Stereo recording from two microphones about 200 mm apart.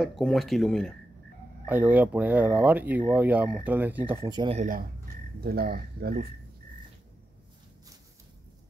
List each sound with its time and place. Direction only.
0.0 s speech: centre (ahead or behind)
1.7 s speech: 10° right (ahead or behind)
4.6 s speech: 45° right (ahead or behind)